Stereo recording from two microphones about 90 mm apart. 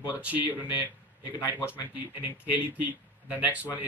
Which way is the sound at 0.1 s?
15° right (ahead or behind).